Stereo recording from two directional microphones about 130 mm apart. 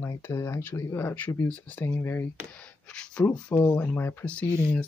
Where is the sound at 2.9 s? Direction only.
5° left (ahead or behind).